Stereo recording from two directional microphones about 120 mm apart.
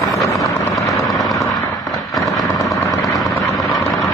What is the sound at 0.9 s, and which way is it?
Vehicle, centre (ahead or behind).